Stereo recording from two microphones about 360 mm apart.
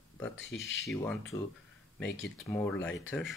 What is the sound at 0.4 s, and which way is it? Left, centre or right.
Speech, left.